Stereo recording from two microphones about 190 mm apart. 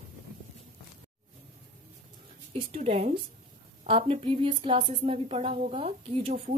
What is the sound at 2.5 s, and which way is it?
A woman's voice, 30° right (ahead or behind).